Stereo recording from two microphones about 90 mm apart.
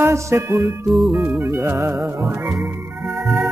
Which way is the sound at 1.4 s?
25° right (ahead or behind).